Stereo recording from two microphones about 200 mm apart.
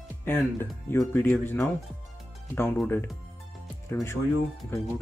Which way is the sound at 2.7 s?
10° left (ahead or behind).